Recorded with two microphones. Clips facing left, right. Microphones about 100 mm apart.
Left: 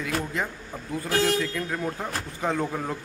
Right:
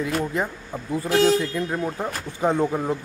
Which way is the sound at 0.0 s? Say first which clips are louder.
Right 4 dB; 25° right (ahead or behind).